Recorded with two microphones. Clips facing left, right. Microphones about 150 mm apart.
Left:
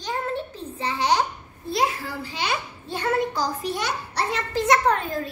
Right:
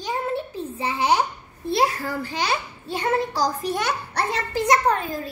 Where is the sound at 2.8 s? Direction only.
15° right (ahead or behind).